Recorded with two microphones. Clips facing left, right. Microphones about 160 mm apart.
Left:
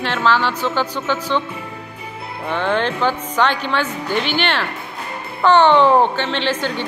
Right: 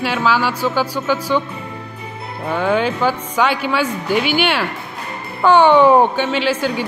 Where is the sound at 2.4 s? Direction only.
10° right (ahead or behind).